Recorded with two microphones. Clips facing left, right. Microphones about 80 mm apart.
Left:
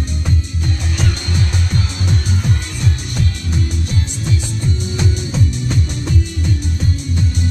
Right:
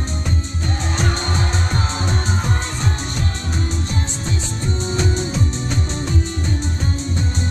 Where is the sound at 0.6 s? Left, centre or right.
Right.